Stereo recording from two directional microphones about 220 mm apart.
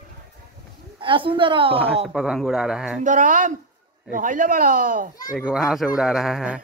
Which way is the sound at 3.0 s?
35° right (ahead or behind).